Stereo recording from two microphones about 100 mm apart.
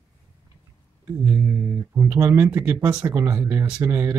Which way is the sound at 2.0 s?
25° right (ahead or behind).